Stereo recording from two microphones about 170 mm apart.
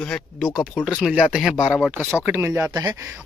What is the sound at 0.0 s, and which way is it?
A man's voice, 5° left (ahead or behind).